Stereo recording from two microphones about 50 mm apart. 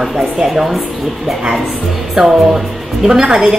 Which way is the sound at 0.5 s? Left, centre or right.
Centre.